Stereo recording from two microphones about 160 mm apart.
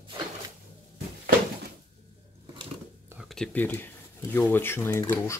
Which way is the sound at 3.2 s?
5° left (ahead or behind).